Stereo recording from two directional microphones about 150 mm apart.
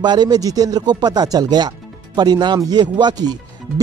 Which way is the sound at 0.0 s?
30° right (ahead or behind).